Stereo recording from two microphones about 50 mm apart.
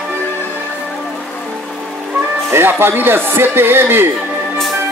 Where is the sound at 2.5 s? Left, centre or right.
Right.